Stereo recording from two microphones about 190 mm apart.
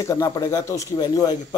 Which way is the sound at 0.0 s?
15° left (ahead or behind).